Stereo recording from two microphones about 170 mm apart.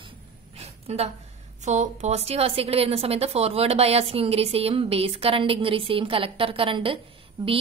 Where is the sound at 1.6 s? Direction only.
45° right (ahead or behind).